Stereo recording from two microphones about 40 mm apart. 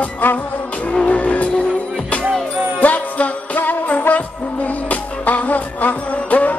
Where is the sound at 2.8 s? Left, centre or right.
Left.